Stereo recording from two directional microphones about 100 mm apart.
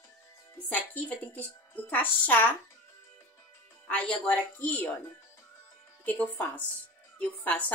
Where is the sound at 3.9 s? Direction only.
15° left (ahead or behind).